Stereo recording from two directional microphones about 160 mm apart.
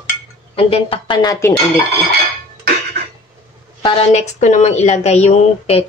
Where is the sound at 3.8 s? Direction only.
45° left (ahead or behind).